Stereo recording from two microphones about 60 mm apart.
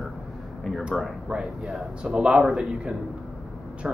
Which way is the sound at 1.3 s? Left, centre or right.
Centre.